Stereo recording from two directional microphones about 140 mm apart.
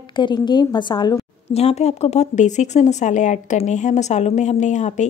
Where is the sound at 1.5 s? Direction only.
50° left (ahead or behind).